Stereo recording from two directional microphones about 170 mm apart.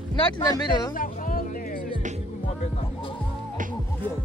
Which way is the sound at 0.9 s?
55° left (ahead or behind).